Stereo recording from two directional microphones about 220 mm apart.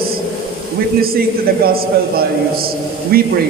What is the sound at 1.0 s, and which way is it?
A man's voice, 45° right (ahead or behind).